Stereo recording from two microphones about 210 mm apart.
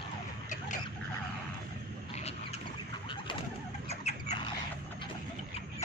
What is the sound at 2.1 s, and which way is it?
Boat, 30° left (ahead or behind).